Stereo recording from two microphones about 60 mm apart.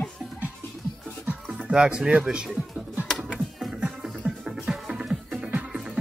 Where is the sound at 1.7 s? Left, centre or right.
Centre.